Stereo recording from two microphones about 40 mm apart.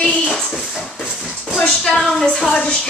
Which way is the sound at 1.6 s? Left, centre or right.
Centre.